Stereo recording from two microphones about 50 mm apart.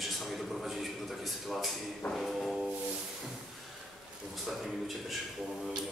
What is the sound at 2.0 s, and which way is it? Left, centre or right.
Music, centre.